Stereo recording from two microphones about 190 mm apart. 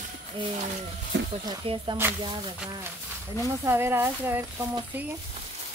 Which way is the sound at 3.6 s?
10° right (ahead or behind).